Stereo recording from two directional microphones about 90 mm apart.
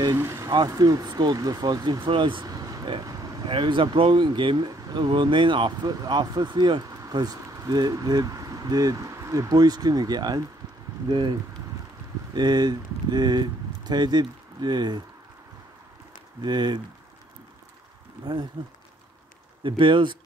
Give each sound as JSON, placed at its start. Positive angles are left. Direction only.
{"t": 0.1, "sound": "speech", "side_deg": -30}
{"t": 0.7, "sound": "speech", "side_deg": -45}
{"t": 2.4, "sound": "vehicle", "side_deg": -40}
{"t": 3.4, "sound": "speech", "side_deg": -65}
{"t": 5.9, "sound": "speech", "side_deg": -50}
{"t": 12.4, "sound": "speech", "side_deg": -50}
{"t": 16.4, "sound": "speech", "side_deg": -55}
{"t": 18.2, "sound": "speech", "side_deg": -55}
{"t": 19.6, "sound": "speech", "side_deg": -65}